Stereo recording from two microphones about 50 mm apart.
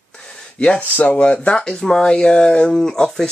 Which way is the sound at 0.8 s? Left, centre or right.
Left.